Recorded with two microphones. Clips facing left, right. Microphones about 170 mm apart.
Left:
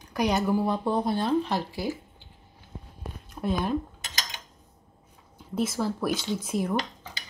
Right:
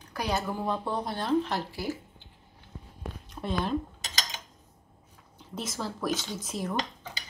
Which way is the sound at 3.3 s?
10° left (ahead or behind).